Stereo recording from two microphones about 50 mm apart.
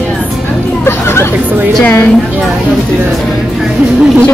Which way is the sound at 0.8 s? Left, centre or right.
Left.